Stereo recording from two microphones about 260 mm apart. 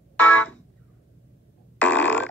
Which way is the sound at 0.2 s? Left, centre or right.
Centre.